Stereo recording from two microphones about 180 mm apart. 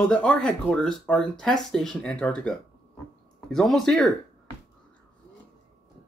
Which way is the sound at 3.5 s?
Centre (ahead or behind).